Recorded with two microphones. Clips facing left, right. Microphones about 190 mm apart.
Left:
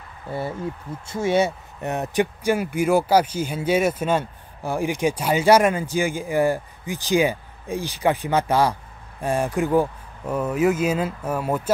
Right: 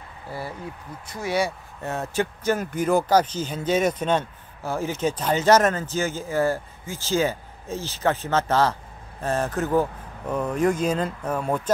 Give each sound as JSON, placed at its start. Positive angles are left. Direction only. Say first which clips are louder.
{"t": 0.3, "sound": "speech", "louder": "left 6 dB", "side_deg": 25}